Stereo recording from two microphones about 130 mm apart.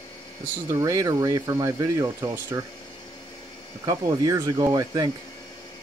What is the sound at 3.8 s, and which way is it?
Speech, 35° right (ahead or behind).